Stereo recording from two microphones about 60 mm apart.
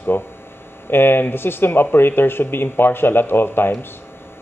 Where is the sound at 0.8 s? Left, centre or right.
Left.